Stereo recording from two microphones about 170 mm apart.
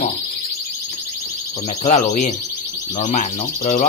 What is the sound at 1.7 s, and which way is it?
Speech, 40° left (ahead or behind).